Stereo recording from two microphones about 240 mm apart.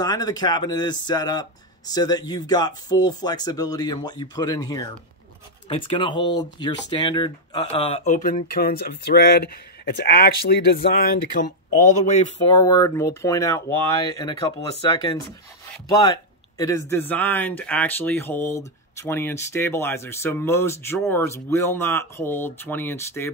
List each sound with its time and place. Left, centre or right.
0.0 s speech: centre; by 11.5 s left
12.1 s speech: centre